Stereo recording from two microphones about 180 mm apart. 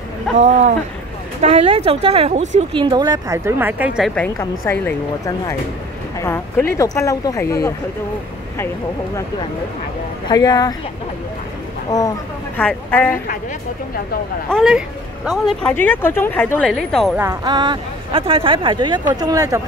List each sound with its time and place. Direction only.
0.4 s speech: 45° right (ahead or behind); by 4.3 s 5° left (ahead or behind)
4.4 s speech: 15° left (ahead or behind)
10.2 s speech: 20° left (ahead or behind)
11.9 s speech: 20° left (ahead or behind)
12.5 s speech: 10° left (ahead or behind)
14.5 s speech: 5° right (ahead or behind)
17.2 s speech: 20° right (ahead or behind)